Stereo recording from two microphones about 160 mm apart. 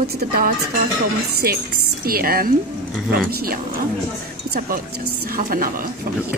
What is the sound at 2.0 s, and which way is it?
A woman's voice, 70° right (ahead or behind).